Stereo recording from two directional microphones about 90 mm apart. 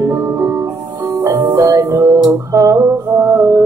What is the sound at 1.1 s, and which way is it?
Music, 45° right (ahead or behind).